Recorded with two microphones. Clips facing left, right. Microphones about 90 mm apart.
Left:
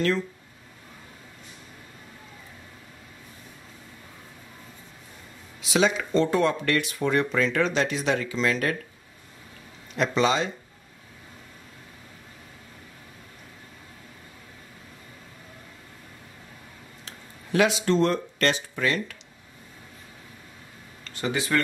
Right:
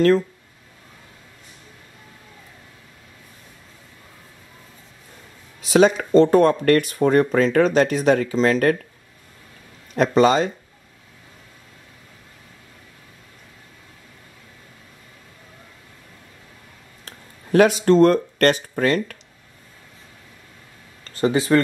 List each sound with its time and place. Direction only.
5.6 s speech: 45° right (ahead or behind)
9.9 s speech: 45° right (ahead or behind)
17.0 s speech: 45° right (ahead or behind)
21.0 s speech: 35° right (ahead or behind)